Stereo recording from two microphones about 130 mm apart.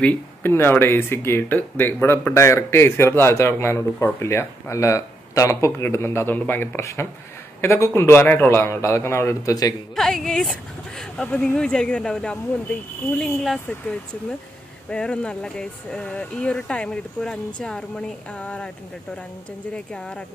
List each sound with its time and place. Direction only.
0.0 s speech: 15° left (ahead or behind)
9.9 s speech: 5° left (ahead or behind)
19.7 s speech: 10° left (ahead or behind)